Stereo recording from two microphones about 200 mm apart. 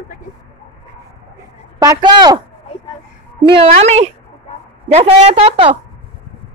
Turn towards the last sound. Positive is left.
turn(degrees=-30)  # may be behind; listen again after turning